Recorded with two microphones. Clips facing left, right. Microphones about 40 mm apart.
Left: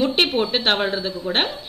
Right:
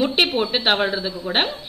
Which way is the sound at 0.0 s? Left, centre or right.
Centre.